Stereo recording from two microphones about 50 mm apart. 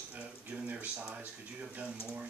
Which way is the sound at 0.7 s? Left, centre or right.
Right.